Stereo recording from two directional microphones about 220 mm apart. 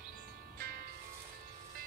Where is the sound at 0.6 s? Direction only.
40° right (ahead or behind).